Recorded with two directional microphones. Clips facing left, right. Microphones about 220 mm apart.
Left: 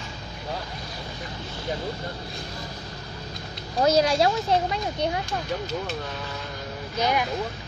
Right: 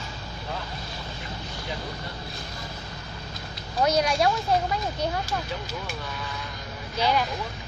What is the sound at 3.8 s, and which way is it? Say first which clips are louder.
Speech: left 3 dB; 25° left (ahead or behind).